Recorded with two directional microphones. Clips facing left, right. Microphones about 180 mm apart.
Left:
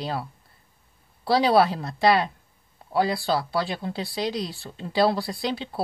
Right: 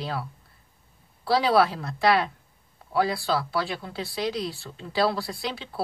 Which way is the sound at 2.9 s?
20° left (ahead or behind).